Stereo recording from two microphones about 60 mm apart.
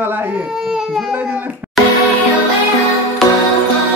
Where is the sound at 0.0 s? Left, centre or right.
Right.